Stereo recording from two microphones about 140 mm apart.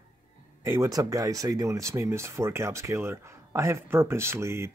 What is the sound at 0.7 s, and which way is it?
Speech, 25° right (ahead or behind).